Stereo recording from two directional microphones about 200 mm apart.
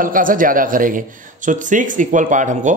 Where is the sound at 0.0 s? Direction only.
45° right (ahead or behind).